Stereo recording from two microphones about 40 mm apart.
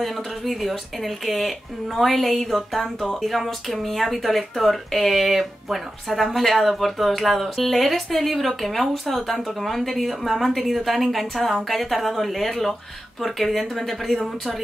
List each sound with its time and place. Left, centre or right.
0.0 s speech: centre